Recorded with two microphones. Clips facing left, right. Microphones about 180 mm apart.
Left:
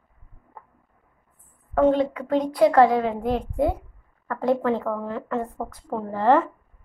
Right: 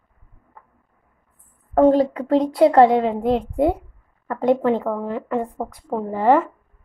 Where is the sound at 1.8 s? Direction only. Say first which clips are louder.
Right 4 dB; 40° right (ahead or behind); by 6.5 s 10° right (ahead or behind).